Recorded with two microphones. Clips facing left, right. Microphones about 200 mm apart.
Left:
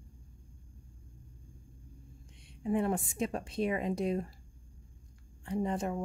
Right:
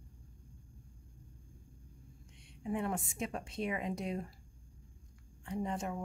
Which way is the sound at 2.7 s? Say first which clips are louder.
Left 6 dB; 35° left (ahead or behind).